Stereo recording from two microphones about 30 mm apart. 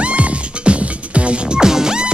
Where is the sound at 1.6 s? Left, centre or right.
Right.